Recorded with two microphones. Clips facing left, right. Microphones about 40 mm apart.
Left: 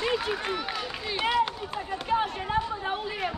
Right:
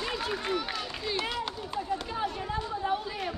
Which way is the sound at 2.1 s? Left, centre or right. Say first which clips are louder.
Left 5 dB; left.